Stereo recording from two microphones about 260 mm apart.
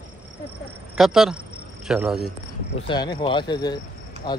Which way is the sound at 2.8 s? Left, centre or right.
Centre.